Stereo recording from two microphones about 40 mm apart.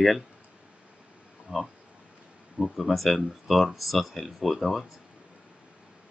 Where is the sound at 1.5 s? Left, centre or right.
Right.